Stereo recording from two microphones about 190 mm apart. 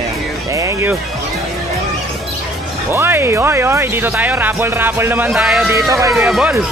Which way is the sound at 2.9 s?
10° right (ahead or behind).